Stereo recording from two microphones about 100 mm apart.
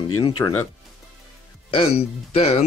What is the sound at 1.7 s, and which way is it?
Speech, 70° left (ahead or behind).